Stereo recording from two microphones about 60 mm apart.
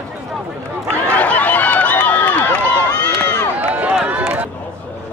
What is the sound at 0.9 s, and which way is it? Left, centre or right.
Run, left.